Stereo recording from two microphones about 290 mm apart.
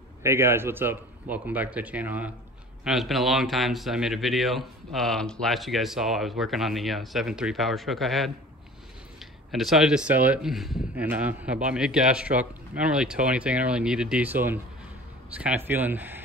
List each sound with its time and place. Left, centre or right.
0.2 s speech: centre